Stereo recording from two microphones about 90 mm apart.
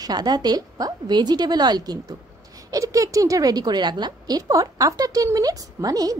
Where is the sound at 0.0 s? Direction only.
50° right (ahead or behind).